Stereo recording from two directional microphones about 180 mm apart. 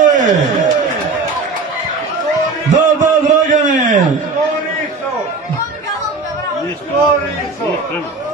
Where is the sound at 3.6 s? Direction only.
45° right (ahead or behind).